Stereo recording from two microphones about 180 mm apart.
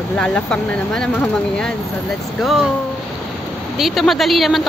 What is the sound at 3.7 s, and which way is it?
Speech, centre (ahead or behind).